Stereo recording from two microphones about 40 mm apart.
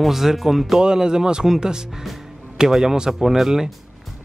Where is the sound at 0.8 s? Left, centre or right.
Centre.